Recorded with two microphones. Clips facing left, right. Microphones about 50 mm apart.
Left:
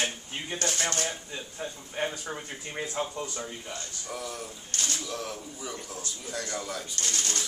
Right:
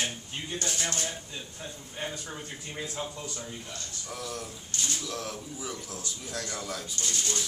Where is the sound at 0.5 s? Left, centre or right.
Left.